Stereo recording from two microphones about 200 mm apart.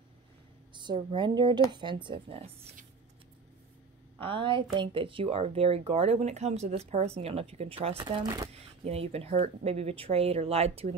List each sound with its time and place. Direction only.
0.7 s speech: 25° right (ahead or behind)
4.2 s speech: 25° right (ahead or behind)